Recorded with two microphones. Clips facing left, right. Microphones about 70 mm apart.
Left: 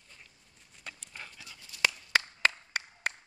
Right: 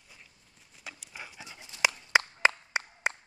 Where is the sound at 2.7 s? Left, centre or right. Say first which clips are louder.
Right 3 dB; centre.